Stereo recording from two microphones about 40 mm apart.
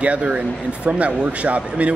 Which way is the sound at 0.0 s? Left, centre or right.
Right.